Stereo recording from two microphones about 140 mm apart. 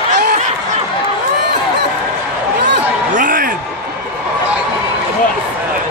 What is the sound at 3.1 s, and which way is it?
Speech, 80° right.